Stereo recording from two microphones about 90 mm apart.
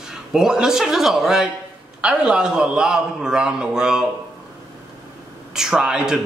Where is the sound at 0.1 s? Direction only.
5° right (ahead or behind).